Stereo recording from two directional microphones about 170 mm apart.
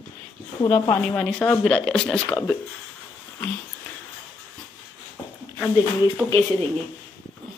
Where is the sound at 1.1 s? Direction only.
5° left (ahead or behind).